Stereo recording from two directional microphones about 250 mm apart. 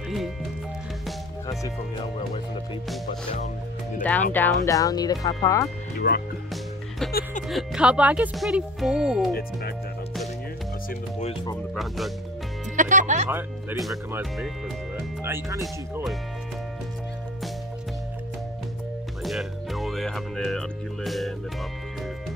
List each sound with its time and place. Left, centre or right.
4.0 s speech: centre
5.9 s speech: left
7.4 s speech: centre
10.9 s speech: left
11.5 s speech: centre
12.7 s speech: right
13.3 s speech: centre
15.6 s speech: centre
19.2 s music: centre